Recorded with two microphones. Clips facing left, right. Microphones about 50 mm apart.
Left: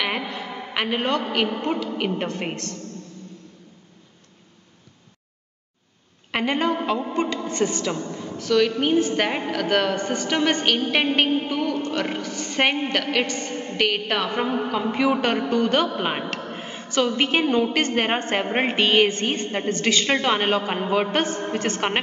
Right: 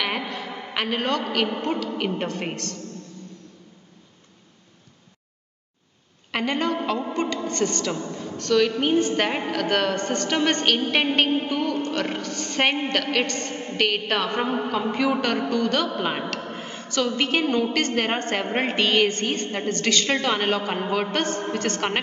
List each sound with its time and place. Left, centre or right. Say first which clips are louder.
0.0 s a sound: left 1 dB; centre
0.8 s a woman's voice: left 1 dB; centre
6.3 s a woman's voice: left 2 dB; centre